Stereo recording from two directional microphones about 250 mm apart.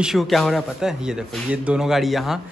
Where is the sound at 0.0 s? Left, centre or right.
Centre.